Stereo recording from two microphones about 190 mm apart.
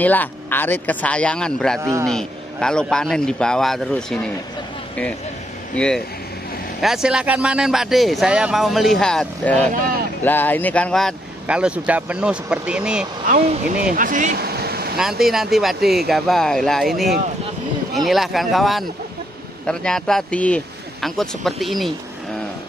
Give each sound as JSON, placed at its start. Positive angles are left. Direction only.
{"t": 0.0, "sound": "speech", "side_deg": 10}
{"t": 1.8, "sound": "a man's voice", "side_deg": -15}
{"t": 2.0, "sound": "speech", "side_deg": 5}
{"t": 5.8, "sound": "speech", "side_deg": 5}
{"t": 9.8, "sound": "speech", "side_deg": -50}
{"t": 10.2, "sound": "speech", "side_deg": 10}
{"t": 13.3, "sound": "speech", "side_deg": -45}
{"t": 15.0, "sound": "speech", "side_deg": 0}